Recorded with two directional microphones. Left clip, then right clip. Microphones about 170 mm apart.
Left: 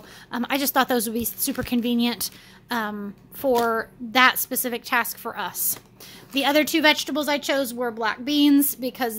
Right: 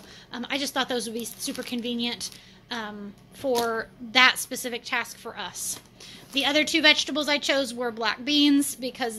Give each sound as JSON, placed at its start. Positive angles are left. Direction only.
{"t": 0.3, "sound": "a woman's voice", "side_deg": 45}
{"t": 3.5, "sound": "a woman's voice", "side_deg": 25}